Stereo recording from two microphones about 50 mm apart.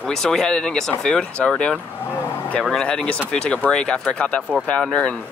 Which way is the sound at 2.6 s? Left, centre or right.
Centre.